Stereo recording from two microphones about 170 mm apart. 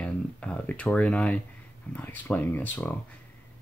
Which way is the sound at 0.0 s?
5° left (ahead or behind).